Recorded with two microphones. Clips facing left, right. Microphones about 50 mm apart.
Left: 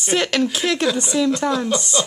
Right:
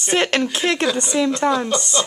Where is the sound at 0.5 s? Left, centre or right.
Right.